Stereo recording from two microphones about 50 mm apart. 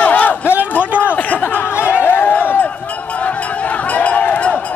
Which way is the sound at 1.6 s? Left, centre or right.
Left.